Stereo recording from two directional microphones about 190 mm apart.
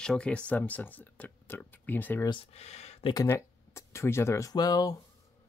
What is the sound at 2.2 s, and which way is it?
Speech, 30° left (ahead or behind).